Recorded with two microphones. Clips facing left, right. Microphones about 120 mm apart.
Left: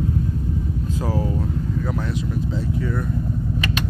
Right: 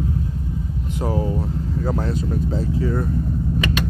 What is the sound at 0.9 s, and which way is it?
Speech, 25° right (ahead or behind).